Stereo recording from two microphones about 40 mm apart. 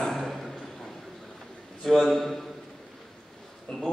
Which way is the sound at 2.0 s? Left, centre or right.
Centre.